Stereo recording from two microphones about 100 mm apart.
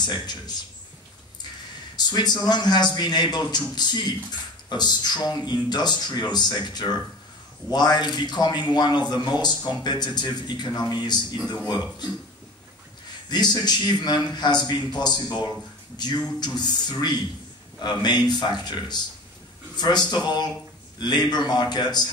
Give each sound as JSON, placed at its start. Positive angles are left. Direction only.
{"t": 0.0, "sound": "speech", "side_deg": 45}
{"t": 2.0, "sound": "speech", "side_deg": 45}
{"t": 13.3, "sound": "speech", "side_deg": 45}